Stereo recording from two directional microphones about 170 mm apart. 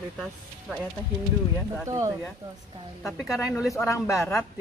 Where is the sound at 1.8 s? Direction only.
20° right (ahead or behind).